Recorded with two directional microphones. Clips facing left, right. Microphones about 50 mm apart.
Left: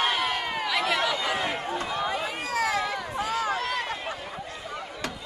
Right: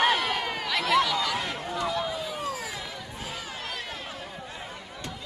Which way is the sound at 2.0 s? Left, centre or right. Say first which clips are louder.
Left 2 dB; left.